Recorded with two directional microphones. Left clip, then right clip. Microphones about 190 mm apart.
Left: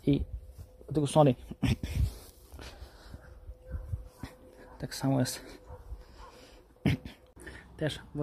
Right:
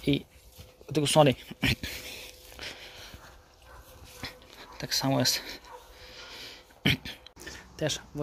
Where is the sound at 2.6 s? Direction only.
10° left (ahead or behind).